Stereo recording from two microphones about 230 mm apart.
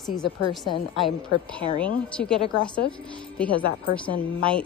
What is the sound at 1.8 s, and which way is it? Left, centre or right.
Speech, centre.